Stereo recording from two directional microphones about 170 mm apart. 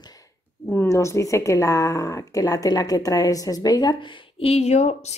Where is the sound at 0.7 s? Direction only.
15° left (ahead or behind).